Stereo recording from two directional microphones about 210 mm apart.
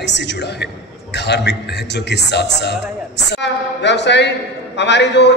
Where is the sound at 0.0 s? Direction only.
55° left (ahead or behind).